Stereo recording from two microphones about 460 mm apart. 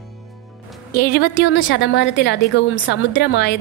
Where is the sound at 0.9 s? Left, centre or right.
Centre.